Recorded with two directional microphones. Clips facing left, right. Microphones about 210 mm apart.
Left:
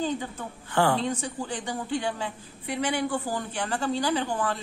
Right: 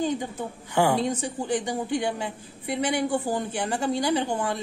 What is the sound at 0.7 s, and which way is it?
Speech, 15° right (ahead or behind).